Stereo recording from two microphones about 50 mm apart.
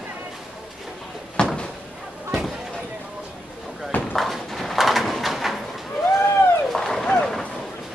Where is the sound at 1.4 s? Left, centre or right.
Centre.